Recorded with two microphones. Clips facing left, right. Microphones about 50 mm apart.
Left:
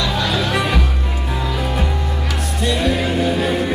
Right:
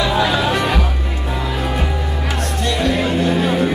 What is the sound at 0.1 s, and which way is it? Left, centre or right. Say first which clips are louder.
Music: right 3 dB; centre.